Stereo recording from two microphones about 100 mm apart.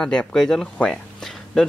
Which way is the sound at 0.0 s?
10° left (ahead or behind).